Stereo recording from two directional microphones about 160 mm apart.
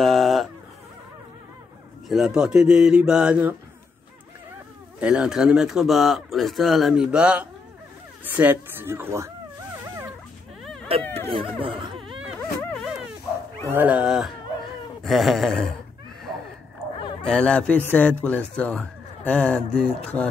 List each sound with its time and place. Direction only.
0.0 s a sound: centre (ahead or behind)
2.0 s a man's voice: centre (ahead or behind)
5.0 s a man's voice: 5° right (ahead or behind)
10.6 s a sound: 5° left (ahead or behind)
11.0 s speech: 15° left (ahead or behind)
11.2 s speech: 35° right (ahead or behind)
12.1 s a sound: 5° right (ahead or behind)
12.7 s dog: centre (ahead or behind)
13.7 s a man's voice: 10° right (ahead or behind)
17.2 s speech: 5° left (ahead or behind)